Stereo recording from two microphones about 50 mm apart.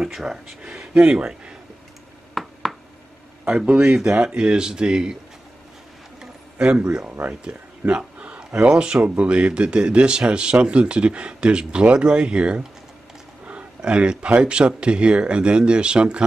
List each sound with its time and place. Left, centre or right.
0.0 s speech: centre
2.4 s a sound: centre
3.4 s speech: right
6.6 s speech: right
7.1 s speech: right
7.9 s speech: right